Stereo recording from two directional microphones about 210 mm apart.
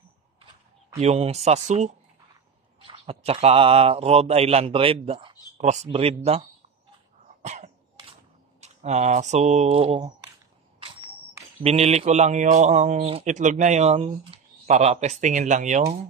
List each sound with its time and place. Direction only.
0.9 s speech: 30° right (ahead or behind)
2.9 s speech: 30° right (ahead or behind)
7.4 s dog: 35° right (ahead or behind)
8.5 s speech: 30° right (ahead or behind)